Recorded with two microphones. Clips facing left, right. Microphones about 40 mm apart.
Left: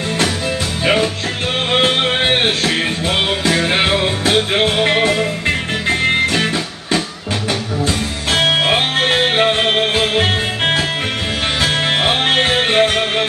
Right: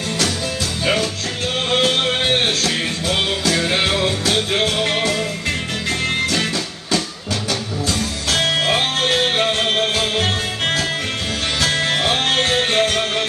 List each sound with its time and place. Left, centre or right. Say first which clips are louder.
0.8 s music: left 5 dB; left